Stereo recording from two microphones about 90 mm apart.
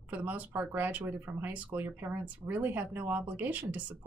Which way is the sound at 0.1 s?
20° right (ahead or behind).